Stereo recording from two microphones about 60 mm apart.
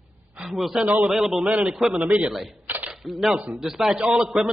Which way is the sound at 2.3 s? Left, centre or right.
Centre.